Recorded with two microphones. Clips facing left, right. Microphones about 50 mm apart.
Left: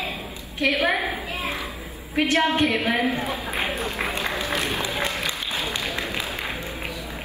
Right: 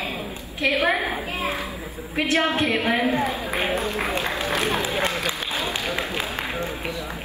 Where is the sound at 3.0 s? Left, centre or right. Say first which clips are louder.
Right 3 dB; right.